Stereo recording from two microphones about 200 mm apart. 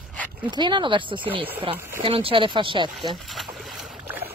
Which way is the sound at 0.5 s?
25° right (ahead or behind).